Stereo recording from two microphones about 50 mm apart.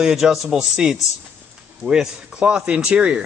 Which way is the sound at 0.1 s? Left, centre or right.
Centre.